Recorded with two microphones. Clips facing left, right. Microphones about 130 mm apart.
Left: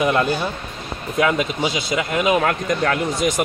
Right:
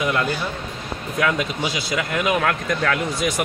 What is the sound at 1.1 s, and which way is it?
Speech, 20° left (ahead or behind).